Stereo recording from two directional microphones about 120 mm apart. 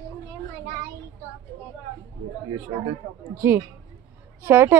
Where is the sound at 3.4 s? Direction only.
20° right (ahead or behind).